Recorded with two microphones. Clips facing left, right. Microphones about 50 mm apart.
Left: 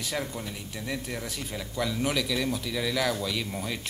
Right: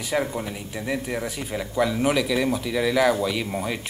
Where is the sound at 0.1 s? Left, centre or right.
Centre.